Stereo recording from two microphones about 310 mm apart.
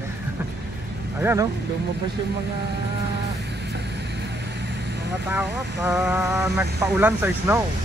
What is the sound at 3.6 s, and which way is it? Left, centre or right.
Vehicle, right.